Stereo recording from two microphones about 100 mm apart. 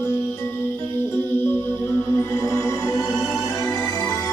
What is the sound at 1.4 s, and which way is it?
Music, 25° left (ahead or behind).